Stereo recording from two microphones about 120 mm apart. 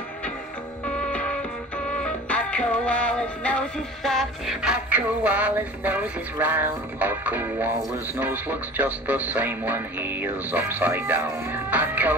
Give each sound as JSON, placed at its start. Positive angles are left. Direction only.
{"t": 1.0, "sound": "music", "side_deg": 10}
{"t": 6.4, "sound": "speech", "side_deg": -15}